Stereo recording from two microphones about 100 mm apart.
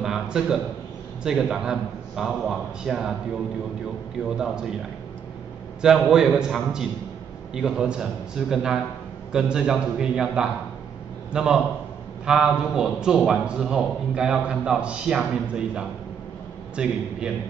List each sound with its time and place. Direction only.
0.0 s a sound: 5° right (ahead or behind)
1.2 s a man's voice: 5° right (ahead or behind)
5.8 s a man's voice: 5° right (ahead or behind)